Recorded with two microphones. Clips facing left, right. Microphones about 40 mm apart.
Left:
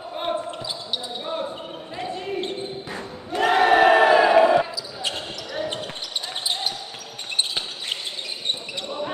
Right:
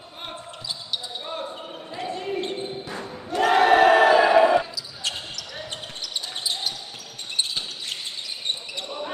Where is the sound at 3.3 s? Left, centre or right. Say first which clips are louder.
Even; centre.